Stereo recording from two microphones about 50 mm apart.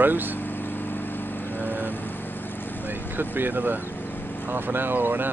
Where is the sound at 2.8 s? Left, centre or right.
Right.